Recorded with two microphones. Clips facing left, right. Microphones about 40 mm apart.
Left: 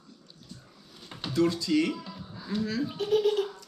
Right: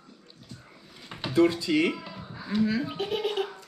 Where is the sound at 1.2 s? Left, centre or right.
Right.